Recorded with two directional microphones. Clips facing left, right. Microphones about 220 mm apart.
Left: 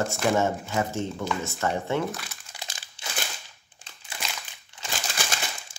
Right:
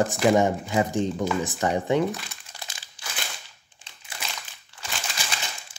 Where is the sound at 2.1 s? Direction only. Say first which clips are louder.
Right 3 dB; centre (ahead or behind).